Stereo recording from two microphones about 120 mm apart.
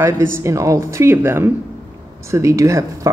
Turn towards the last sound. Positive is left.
turn(degrees=-25)  # may be behind; listen again after turning